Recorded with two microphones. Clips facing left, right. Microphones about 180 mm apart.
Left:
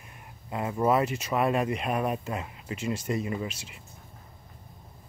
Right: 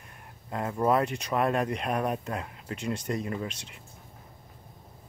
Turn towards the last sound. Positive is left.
turn(degrees=5)  # may be behind; listen again after turning